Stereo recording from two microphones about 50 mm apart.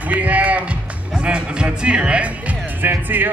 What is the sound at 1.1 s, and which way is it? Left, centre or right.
Speech, centre.